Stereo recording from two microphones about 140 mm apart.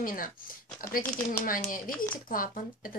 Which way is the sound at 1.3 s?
85° left.